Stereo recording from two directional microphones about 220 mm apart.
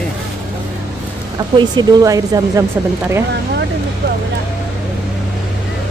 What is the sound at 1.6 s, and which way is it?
Speech, 20° right (ahead or behind).